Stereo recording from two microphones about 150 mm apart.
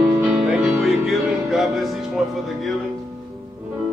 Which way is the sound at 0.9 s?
Centre (ahead or behind).